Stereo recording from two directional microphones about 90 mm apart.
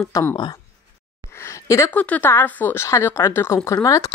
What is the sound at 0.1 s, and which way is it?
Speech, 30° left (ahead or behind).